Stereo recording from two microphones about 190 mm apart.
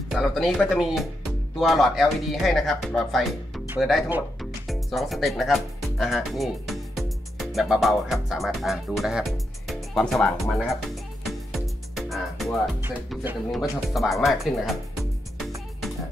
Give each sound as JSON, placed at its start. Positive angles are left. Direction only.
{"t": 0.1, "sound": "speech", "side_deg": 0}
{"t": 11.2, "sound": "music", "side_deg": 0}
{"t": 13.1, "sound": "speech", "side_deg": -5}